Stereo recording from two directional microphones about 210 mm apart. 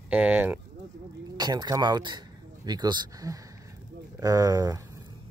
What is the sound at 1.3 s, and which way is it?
Speech, 20° right (ahead or behind).